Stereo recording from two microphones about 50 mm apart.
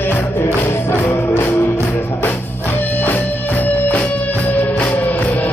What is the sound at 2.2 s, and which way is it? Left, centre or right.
Music, left.